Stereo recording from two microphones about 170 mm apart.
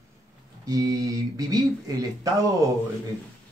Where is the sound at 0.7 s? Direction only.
20° right (ahead or behind).